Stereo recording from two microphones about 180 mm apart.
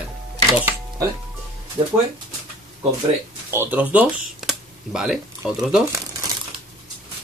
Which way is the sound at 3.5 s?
10° right (ahead or behind).